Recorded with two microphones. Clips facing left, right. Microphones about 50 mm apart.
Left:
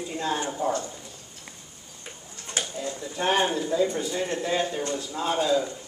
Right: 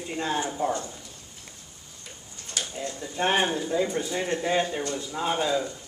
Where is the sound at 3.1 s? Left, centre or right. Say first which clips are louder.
Even; centre.